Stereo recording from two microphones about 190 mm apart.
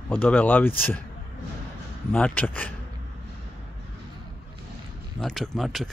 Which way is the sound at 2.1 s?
5° left (ahead or behind).